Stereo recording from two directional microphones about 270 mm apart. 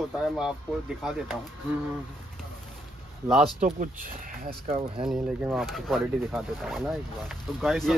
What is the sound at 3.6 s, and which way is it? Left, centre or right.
Speech, right.